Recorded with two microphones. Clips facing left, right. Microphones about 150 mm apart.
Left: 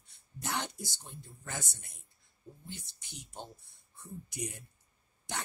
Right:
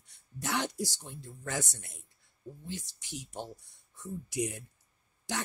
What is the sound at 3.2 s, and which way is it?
Speech, 80° right.